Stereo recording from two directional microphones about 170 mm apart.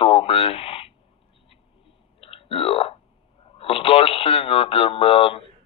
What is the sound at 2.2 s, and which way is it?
Burping, 35° left (ahead or behind).